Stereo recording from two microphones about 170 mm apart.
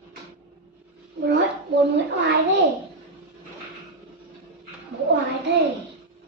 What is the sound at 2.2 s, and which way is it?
Speech, 90° right.